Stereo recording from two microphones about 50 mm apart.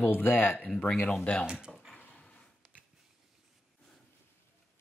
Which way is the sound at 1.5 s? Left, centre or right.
Centre.